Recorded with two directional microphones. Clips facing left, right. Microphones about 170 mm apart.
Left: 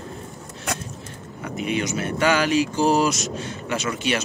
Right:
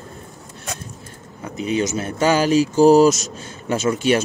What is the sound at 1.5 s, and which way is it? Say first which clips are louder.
Speech: right 4 dB; 35° right (ahead or behind).